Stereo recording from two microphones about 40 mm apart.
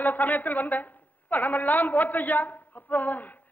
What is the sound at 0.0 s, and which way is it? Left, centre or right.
A woman's voice, left.